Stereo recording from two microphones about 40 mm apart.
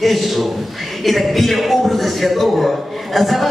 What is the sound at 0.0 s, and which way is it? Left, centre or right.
A man's voice, centre.